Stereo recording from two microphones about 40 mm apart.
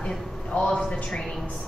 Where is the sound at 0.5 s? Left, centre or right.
Centre.